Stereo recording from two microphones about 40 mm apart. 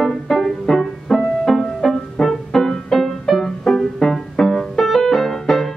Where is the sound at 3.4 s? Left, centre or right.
Centre.